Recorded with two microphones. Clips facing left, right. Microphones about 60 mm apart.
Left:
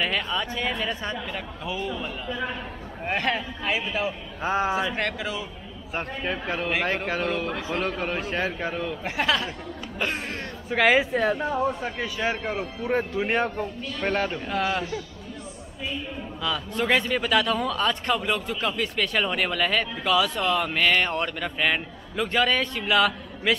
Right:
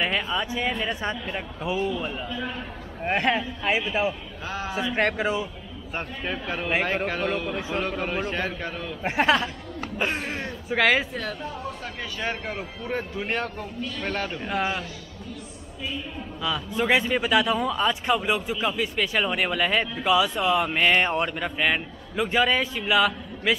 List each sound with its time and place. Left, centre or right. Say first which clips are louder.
0.0 s a man's voice: right 1 dB; centre
0.8 s speech: right 1 dB; right
2.2 s speech: left 2 dB; centre
3.2 s speech: right 3 dB; right
4.4 s speech: left 9 dB; left
4.9 s speech: right 5 dB; right
5.9 s a man's voice: left 2 dB; centre
9.0 s speech: right 5 dB; right
9.9 s speech: right 1 dB; centre
10.7 s a man's voice: left 2 dB; centre
14.4 s a man's voice: left 1 dB; centre
16.4 s speech: right 1 dB; centre